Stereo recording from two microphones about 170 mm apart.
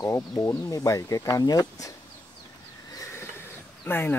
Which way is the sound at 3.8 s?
10° left (ahead or behind).